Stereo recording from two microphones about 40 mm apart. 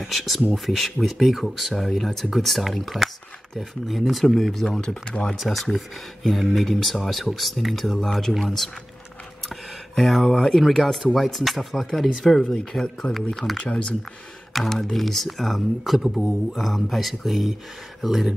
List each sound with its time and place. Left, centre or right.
0.0 s speech: centre
4.7 s speech: left
5.3 s speech: centre
13.0 s speech: left
13.4 s speech: centre